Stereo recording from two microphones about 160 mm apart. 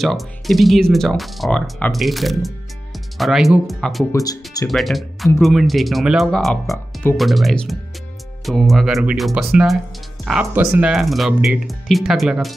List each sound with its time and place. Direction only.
0.0 s speech: centre (ahead or behind)
4.1 s speech: 25° left (ahead or behind)
4.6 s speech: centre (ahead or behind)